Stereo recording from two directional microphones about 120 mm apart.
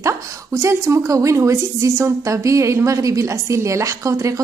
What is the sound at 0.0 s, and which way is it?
A woman's voice, 25° right (ahead or behind).